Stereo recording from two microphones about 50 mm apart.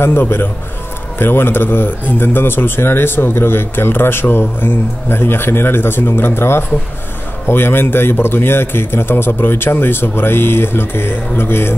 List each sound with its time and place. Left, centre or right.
0.0 s a man's voice: left